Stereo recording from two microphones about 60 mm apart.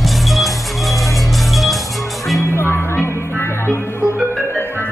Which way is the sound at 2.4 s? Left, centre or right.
Left.